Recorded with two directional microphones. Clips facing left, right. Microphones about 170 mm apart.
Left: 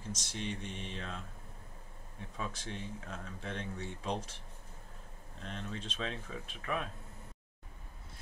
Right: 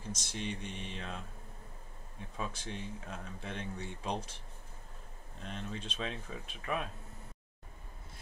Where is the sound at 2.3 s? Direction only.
15° right (ahead or behind).